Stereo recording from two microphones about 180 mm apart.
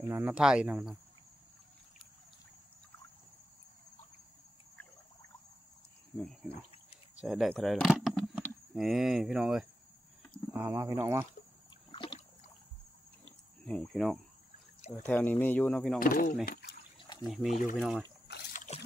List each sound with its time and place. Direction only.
0.0 s speech: 10° right (ahead or behind)
6.1 s speech: 5° left (ahead or behind)
10.5 s speech: 15° right (ahead or behind)
11.9 s a sound: 25° left (ahead or behind)
13.7 s speech: 5° left (ahead or behind)
16.0 s speech: 50° left (ahead or behind)
17.0 s a sound: 25° left (ahead or behind)
17.3 s speech: centre (ahead or behind)
18.5 s trickle: 45° left (ahead or behind)